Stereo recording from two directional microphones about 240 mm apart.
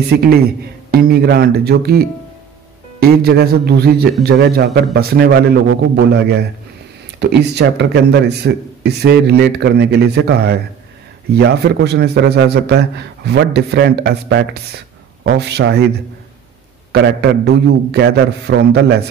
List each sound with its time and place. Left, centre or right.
0.9 s a man's voice: right
16.9 s speech: right